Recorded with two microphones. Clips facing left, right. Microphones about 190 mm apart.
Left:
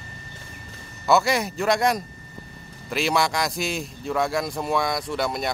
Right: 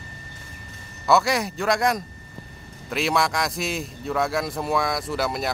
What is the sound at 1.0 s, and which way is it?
A man's voice, centre (ahead or behind).